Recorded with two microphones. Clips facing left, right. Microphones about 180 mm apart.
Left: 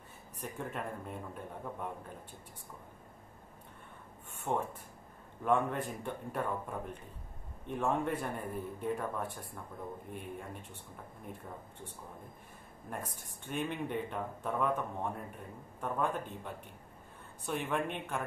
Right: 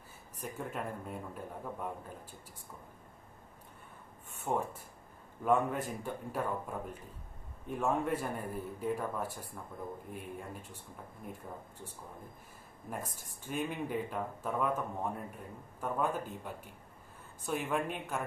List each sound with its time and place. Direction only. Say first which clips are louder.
0.4 s speech: even; centre (ahead or behind)
4.5 s speech: even; 10° right (ahead or behind)
12.9 s speech: right 1 dB; 5° right (ahead or behind)